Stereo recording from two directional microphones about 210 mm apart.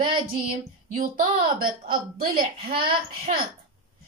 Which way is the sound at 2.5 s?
25° right (ahead or behind).